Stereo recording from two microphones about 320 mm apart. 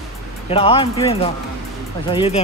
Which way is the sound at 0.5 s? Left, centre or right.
Centre.